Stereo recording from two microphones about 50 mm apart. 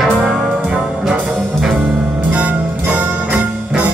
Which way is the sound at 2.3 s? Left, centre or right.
Right.